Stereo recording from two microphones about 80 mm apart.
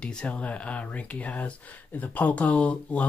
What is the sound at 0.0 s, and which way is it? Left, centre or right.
Speech, centre.